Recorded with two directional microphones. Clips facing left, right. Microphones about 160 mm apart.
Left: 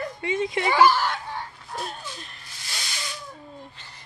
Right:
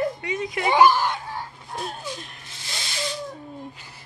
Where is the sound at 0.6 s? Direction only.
20° right (ahead or behind); by 2.3 s centre (ahead or behind).